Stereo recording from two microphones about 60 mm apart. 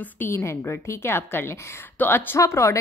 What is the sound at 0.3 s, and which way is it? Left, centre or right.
A woman's voice, left.